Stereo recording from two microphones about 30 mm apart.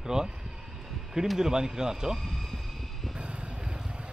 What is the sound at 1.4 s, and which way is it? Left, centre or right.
Speech, right.